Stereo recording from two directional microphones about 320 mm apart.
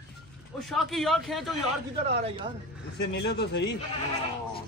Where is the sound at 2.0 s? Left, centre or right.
Centre.